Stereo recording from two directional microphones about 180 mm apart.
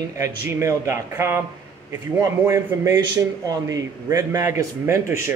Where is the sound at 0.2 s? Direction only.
15° right (ahead or behind).